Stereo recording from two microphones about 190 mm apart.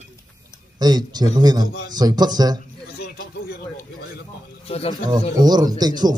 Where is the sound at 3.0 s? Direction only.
55° left (ahead or behind).